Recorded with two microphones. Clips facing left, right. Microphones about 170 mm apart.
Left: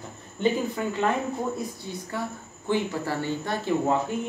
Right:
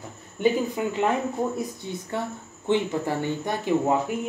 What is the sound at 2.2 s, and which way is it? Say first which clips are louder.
Speech: right 1 dB; 25° right (ahead or behind).